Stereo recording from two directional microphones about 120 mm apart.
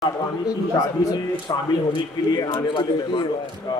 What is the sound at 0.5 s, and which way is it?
A man's voice, 30° left (ahead or behind).